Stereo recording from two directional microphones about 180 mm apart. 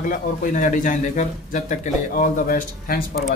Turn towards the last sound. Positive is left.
turn(degrees=50)  # may be behind; listen again after turning